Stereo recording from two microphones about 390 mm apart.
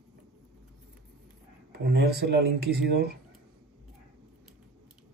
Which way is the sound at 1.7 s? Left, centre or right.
Right.